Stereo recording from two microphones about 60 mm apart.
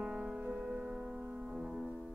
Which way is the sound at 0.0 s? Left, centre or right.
Centre.